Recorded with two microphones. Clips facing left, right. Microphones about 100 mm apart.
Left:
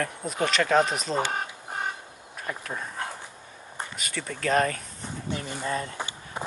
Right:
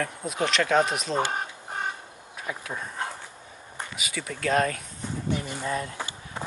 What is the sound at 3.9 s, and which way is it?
Speech, 5° right (ahead or behind).